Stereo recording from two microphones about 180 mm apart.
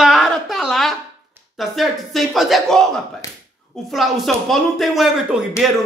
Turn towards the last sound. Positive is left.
turn(degrees=-5)  # may be behind; listen again after turning